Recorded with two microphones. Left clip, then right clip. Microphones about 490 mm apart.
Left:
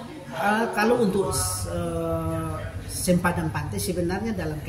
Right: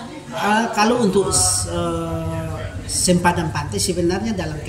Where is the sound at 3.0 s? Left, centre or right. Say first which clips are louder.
Right 6 dB; left.